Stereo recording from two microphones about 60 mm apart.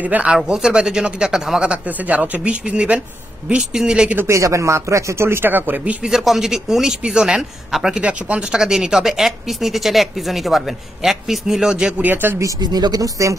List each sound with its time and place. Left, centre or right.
0.0 s speech: right
4.3 s speech: right
5.5 s speech: right
6.0 s speech: centre
12.0 s speech: right
12.4 s speech: right